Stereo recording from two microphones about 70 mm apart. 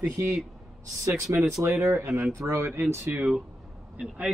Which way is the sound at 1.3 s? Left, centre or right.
Right.